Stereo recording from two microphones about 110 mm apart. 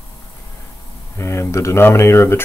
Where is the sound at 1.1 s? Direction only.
25° left (ahead or behind).